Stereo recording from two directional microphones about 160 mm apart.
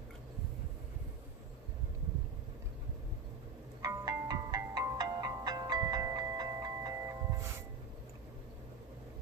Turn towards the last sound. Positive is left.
turn(degrees=-20)  # may be behind; listen again after turning